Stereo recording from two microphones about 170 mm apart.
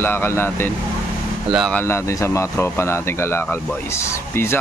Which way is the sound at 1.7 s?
15° left (ahead or behind).